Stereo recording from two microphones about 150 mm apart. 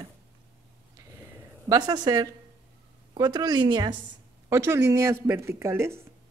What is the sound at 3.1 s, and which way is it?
Speech, 25° right (ahead or behind).